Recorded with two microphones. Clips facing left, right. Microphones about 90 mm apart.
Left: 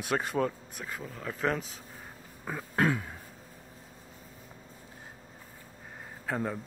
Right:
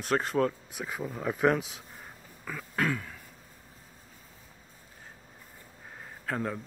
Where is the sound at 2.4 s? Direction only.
25° left (ahead or behind).